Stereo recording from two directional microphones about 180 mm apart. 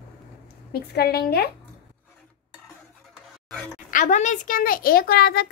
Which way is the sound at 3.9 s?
45° left (ahead or behind).